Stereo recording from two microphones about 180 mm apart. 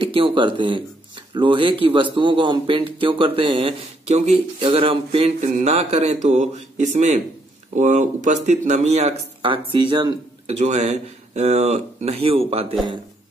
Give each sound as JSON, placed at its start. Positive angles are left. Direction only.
{"t": 0.0, "sound": "speech", "side_deg": -30}
{"t": 10.5, "sound": "speech", "side_deg": -40}